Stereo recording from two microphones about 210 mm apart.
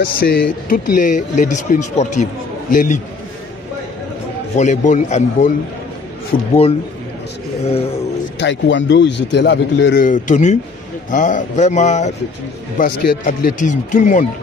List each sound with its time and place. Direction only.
0.0 s speech: 45° left (ahead or behind)
4.6 s speech: 35° left (ahead or behind)
8.4 s speech: 60° left (ahead or behind)
10.0 s speech: 35° left (ahead or behind)